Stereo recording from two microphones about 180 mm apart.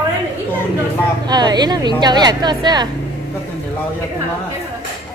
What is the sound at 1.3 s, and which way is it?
A woman's voice, 25° right (ahead or behind).